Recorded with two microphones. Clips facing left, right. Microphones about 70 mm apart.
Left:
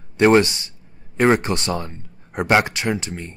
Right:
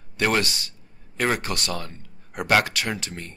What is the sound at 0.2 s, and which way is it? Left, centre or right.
Speech, left.